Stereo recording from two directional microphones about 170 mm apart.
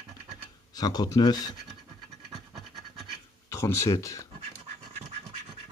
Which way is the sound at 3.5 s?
15° left (ahead or behind).